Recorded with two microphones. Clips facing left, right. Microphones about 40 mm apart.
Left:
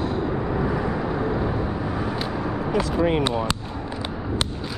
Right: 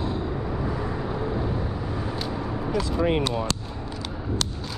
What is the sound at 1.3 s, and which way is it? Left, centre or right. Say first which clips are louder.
Vehicle: left 4 dB; left.